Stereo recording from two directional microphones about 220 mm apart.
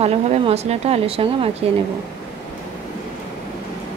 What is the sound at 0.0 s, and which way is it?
Speech, 30° right (ahead or behind).